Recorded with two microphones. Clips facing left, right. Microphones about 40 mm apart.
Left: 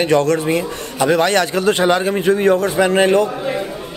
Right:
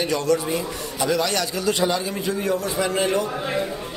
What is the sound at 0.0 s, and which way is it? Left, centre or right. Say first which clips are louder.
A man's voice: left 7 dB; left.